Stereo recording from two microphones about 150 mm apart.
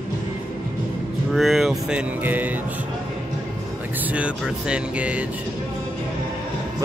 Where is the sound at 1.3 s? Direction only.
Centre (ahead or behind).